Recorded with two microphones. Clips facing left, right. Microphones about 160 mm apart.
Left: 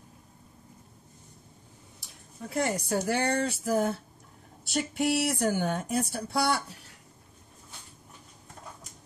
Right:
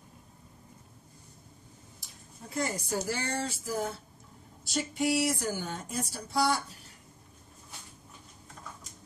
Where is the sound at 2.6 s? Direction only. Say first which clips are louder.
Left 4 dB; 65° left (ahead or behind).